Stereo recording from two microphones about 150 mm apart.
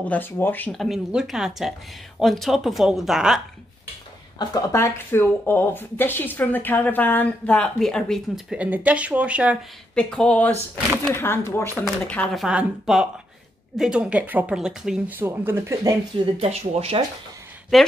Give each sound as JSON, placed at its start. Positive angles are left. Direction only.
{"t": 0.0, "sound": "speech", "side_deg": 10}
{"t": 0.7, "sound": "speech", "side_deg": 0}
{"t": 4.4, "sound": "speech", "side_deg": 20}
{"t": 8.5, "sound": "speech", "side_deg": -10}
{"t": 9.9, "sound": "speech", "side_deg": 5}
{"t": 11.7, "sound": "speech", "side_deg": 5}
{"t": 16.3, "sound": "speech", "side_deg": -45}
{"t": 17.7, "sound": "speech", "side_deg": 0}